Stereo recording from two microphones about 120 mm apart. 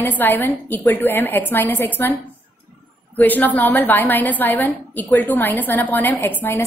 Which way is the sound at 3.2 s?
15° left (ahead or behind).